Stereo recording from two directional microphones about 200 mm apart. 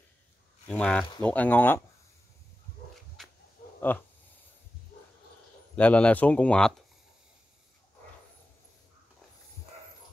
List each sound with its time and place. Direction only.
0.7 s speech: 5° left (ahead or behind)
3.2 s dog: centre (ahead or behind)
3.9 s speech: 10° left (ahead or behind)
5.8 s speech: 5° left (ahead or behind)